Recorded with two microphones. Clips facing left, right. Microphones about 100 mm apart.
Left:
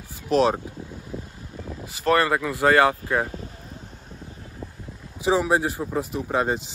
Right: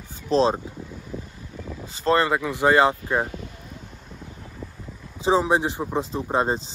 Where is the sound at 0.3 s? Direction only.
30° right (ahead or behind).